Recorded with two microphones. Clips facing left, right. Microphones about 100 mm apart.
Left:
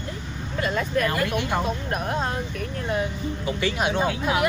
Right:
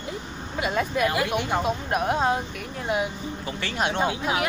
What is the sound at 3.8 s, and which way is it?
Speech, 5° left (ahead or behind).